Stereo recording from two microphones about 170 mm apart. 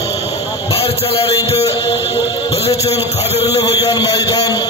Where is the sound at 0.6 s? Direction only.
35° left (ahead or behind).